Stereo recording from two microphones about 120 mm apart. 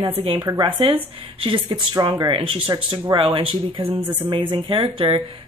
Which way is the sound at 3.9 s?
15° right (ahead or behind).